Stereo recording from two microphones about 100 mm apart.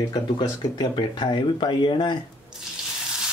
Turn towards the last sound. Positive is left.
turn(degrees=55)  # may be behind; listen again after turning